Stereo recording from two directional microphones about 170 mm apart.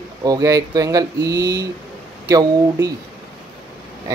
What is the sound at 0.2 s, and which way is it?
Speech, 20° right (ahead or behind).